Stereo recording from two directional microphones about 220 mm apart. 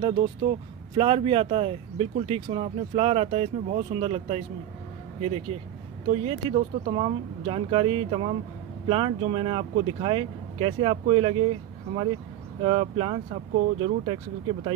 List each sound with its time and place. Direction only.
0.0 s speech: 25° right (ahead or behind)
5.5 s speech: 25° right (ahead or behind)
12.6 s speech: 25° right (ahead or behind)